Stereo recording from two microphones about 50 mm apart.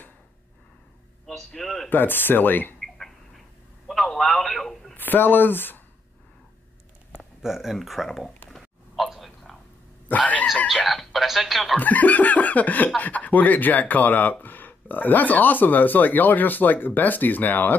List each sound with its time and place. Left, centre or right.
1.2 s a man's voice: centre
1.9 s speech: left
3.9 s telephone: centre
4.9 s speech: left
7.4 s speech: centre
8.9 s a sound: centre
10.0 s a sound: left
10.9 s speech: centre
11.7 s speech: left